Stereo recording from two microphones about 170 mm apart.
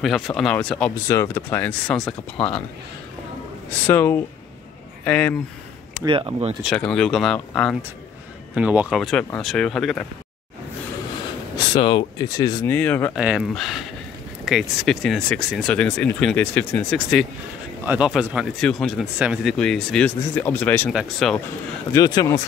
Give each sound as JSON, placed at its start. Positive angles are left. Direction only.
{"t": 0.0, "sound": "speech", "side_deg": 0}
{"t": 2.3, "sound": "speech", "side_deg": 35}
{"t": 3.8, "sound": "speech", "side_deg": 10}
{"t": 6.0, "sound": "speech", "side_deg": -30}
{"t": 6.6, "sound": "speech", "side_deg": 5}
{"t": 8.5, "sound": "speech", "side_deg": -10}
{"t": 11.5, "sound": "speech", "side_deg": 30}
{"t": 12.6, "sound": "speech", "side_deg": 10}
{"t": 13.1, "sound": "speech", "side_deg": -5}
{"t": 20.9, "sound": "speech", "side_deg": 0}
{"t": 21.9, "sound": "speech", "side_deg": 20}